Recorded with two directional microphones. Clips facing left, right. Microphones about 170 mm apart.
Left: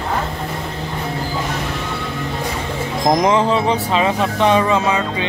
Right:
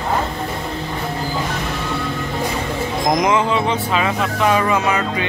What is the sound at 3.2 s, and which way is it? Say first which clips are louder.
Speech: left 2 dB; 35° left (ahead or behind).